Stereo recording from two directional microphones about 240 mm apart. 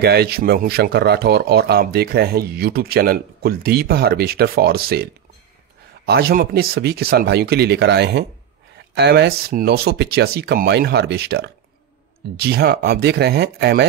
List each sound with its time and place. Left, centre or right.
0.0 s speech: right
6.0 s speech: right